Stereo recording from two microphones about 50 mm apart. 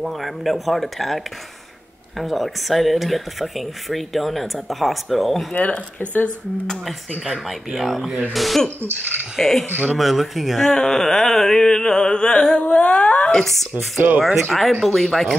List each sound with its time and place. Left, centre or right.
0.0 s speech: centre
5.5 s speech: left
7.2 s speech: centre
10.7 s a sound: centre
13.4 s speech: centre